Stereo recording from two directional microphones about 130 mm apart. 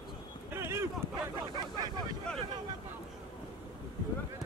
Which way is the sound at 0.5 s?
20° right (ahead or behind).